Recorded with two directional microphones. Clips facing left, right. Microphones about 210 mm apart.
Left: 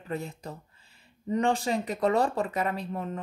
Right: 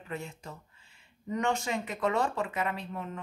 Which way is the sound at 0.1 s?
35° left (ahead or behind).